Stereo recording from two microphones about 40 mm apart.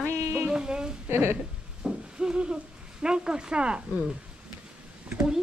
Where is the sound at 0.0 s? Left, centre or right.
Right.